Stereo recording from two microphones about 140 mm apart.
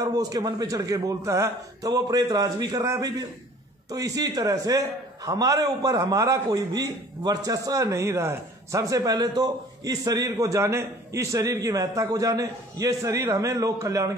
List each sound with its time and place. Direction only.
0.0 s a man's voice: 25° right (ahead or behind)